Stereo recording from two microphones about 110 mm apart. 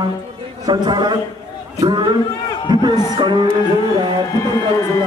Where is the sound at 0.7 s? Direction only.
40° right (ahead or behind).